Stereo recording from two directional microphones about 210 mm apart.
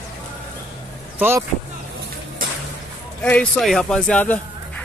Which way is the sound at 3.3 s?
5° left (ahead or behind).